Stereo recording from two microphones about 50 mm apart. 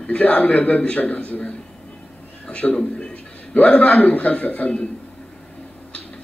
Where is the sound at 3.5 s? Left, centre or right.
Left.